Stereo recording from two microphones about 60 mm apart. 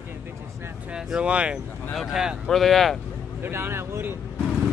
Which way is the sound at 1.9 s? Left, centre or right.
Centre.